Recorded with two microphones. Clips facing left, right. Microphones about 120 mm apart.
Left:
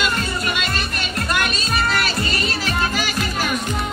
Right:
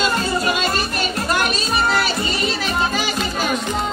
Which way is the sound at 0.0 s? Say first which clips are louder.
Right 4 dB; 30° right (ahead or behind).